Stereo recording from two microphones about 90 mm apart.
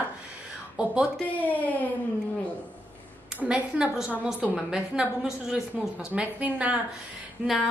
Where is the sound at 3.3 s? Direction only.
10° right (ahead or behind).